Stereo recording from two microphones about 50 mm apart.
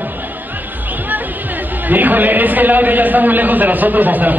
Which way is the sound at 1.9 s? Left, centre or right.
Right.